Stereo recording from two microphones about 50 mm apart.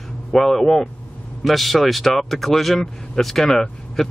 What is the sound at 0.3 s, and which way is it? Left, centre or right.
Speech, centre.